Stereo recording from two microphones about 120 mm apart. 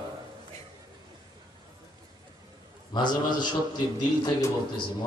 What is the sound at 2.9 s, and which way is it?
A man's voice, 35° left (ahead or behind).